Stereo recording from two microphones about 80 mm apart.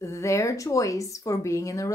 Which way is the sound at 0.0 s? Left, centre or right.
Left.